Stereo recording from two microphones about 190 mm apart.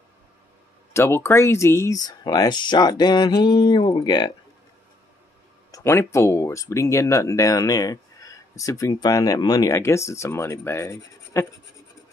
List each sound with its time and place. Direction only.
0.9 s speech: 15° left (ahead or behind)
5.7 s speech: 15° left (ahead or behind)